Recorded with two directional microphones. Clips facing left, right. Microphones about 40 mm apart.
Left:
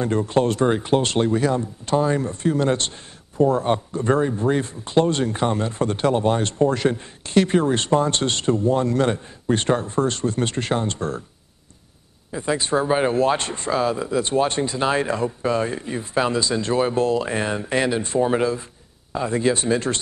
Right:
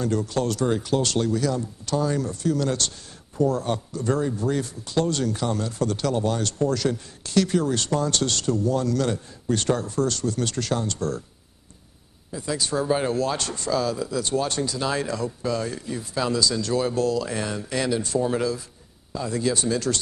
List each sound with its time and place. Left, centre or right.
0.0 s speech: left
12.3 s speech: left